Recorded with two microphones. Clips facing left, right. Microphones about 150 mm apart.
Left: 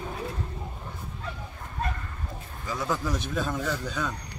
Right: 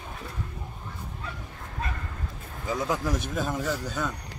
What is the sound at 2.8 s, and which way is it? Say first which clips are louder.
Speech: left 1 dB; 10° right (ahead or behind).